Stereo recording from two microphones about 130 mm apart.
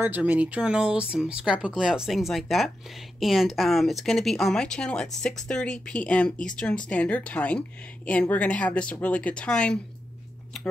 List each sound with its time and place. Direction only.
0.0 s speech: 10° right (ahead or behind); by 9.8 s 5° left (ahead or behind)